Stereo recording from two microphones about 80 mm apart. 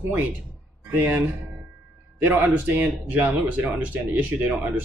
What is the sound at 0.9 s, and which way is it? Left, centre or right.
Speech, right.